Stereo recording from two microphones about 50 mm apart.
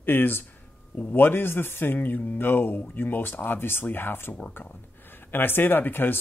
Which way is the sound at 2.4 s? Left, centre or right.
Left.